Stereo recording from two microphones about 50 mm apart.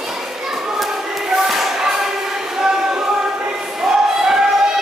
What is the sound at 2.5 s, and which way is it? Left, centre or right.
Choir, centre.